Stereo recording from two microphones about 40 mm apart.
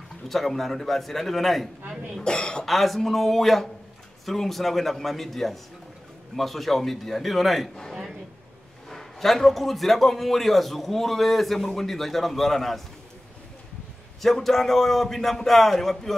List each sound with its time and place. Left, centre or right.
0.3 s a man's voice: centre
2.1 s speech: left
2.6 s a man's voice: centre
8.8 s a man's voice: centre
14.2 s a man's voice: centre